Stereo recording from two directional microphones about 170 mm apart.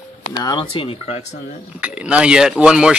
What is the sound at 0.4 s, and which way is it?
Speech, 25° left (ahead or behind).